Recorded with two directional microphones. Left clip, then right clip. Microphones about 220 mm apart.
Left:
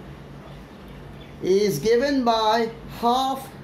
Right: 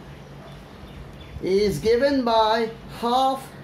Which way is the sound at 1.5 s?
10° left (ahead or behind).